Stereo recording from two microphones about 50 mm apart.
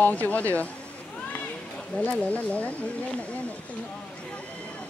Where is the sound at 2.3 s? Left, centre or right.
Left.